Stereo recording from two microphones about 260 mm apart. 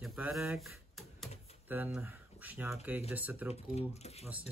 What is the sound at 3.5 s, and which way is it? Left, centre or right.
Speech, left.